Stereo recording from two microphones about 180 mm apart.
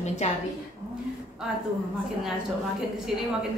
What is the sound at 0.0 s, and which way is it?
Speech, 40° left (ahead or behind).